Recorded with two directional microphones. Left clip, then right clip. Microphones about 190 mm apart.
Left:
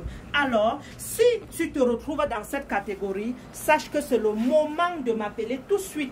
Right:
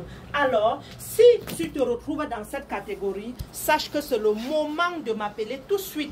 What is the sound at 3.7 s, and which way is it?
A woman's voice, 25° left (ahead or behind).